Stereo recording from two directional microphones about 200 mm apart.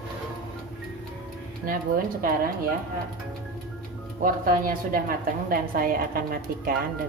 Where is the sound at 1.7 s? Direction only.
45° right (ahead or behind).